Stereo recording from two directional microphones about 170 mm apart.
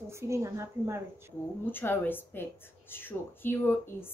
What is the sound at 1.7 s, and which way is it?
Speech, 10° left (ahead or behind).